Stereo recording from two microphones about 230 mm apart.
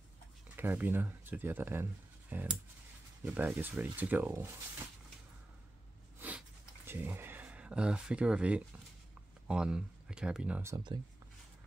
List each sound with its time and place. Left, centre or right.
0.6 s speech: centre
6.1 s a sound: centre
6.9 s speech: centre